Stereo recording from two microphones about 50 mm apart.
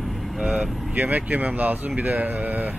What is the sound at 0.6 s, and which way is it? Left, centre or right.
Speech, right.